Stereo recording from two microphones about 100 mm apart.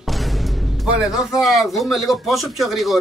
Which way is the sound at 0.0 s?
Centre (ahead or behind).